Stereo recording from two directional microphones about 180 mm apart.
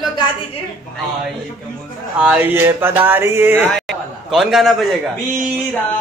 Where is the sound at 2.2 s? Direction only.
5° right (ahead or behind).